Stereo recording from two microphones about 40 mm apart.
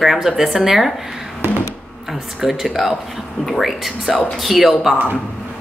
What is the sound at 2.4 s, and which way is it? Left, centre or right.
Speech, centre.